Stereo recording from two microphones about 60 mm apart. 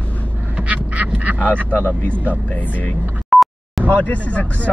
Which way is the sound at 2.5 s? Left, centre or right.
Left.